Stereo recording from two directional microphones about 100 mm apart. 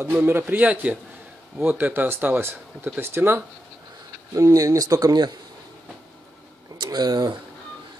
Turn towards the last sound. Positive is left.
turn(degrees=-45)  # may be behind; listen again after turning